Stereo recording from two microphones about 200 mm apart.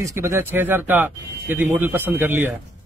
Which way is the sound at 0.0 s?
15° right (ahead or behind).